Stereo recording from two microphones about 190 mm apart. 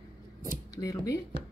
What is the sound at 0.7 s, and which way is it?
Speech, 20° left (ahead or behind).